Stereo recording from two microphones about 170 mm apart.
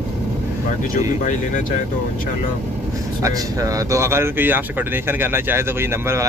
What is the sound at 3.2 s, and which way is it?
Speech, 20° right (ahead or behind).